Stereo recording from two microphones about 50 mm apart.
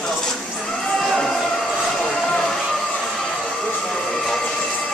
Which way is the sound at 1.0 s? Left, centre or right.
Centre.